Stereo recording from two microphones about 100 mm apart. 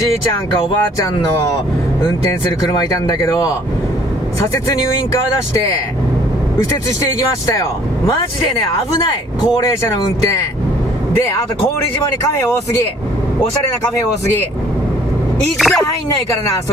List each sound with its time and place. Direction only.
2.7 s speech: 40° left (ahead or behind)
15.5 s speech: centre (ahead or behind)